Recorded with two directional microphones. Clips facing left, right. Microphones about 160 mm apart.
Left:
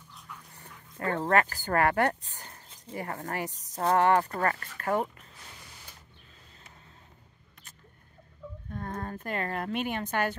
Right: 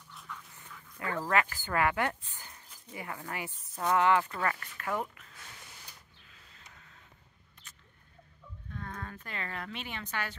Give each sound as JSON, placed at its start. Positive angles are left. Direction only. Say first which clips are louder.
{"t": 0.5, "sound": "dog", "louder": "left 1 dB", "side_deg": 40}
{"t": 1.3, "sound": "speech", "louder": "left 4 dB", "side_deg": 40}
{"t": 8.6, "sound": "speech", "louder": "left 6 dB", "side_deg": 45}